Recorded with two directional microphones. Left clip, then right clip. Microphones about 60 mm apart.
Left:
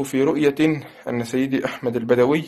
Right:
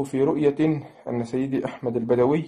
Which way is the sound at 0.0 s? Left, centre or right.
Right.